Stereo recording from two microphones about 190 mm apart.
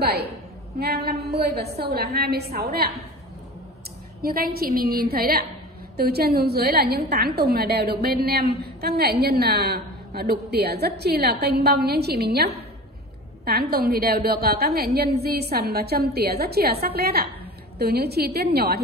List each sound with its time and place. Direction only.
0.0 s a woman's voice: 55° right (ahead or behind)
4.2 s a woman's voice: 50° right (ahead or behind)